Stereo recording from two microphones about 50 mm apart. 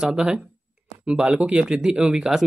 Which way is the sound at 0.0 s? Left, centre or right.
Centre.